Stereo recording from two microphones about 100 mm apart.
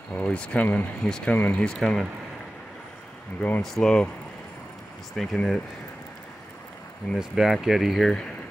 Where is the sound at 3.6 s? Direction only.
5° left (ahead or behind).